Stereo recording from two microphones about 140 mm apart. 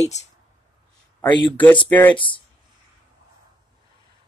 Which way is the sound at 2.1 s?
35° left (ahead or behind).